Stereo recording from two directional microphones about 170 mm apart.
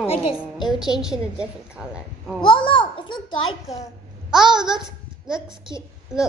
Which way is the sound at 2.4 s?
30° left (ahead or behind).